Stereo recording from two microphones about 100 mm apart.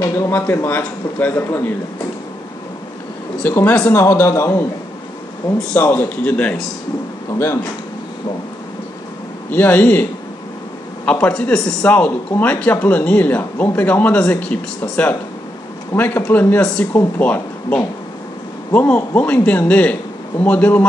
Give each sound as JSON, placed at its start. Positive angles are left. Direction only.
{"t": 0.3, "sound": "a man's voice", "side_deg": 20}
{"t": 3.4, "sound": "speech", "side_deg": 20}
{"t": 3.9, "sound": "a man's voice", "side_deg": 30}
{"t": 5.7, "sound": "speech", "side_deg": 20}
{"t": 9.5, "sound": "speech", "side_deg": 15}
{"t": 11.1, "sound": "a man's voice", "side_deg": 15}